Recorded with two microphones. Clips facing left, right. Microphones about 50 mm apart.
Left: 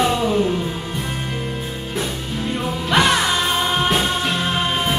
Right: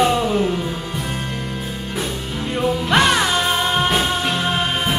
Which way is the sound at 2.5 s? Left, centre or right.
Centre.